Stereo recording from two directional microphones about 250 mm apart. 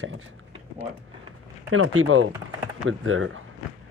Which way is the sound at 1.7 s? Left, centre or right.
Right.